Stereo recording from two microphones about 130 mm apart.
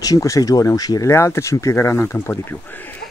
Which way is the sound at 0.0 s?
25° left (ahead or behind).